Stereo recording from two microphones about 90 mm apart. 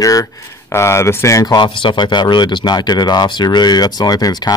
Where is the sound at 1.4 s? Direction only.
60° left (ahead or behind).